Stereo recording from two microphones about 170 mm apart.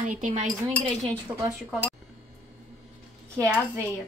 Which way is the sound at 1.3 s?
25° right (ahead or behind).